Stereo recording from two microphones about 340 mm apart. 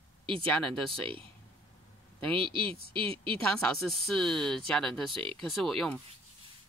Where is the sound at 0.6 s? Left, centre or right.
Centre.